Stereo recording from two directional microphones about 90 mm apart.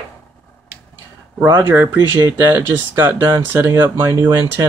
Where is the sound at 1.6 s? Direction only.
25° right (ahead or behind).